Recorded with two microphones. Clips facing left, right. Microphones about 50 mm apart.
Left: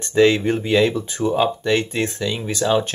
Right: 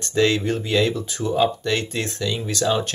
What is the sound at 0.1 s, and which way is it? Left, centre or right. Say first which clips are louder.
Speech: left 4 dB; centre.